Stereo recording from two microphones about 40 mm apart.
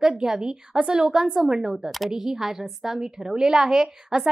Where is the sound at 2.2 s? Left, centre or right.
Centre.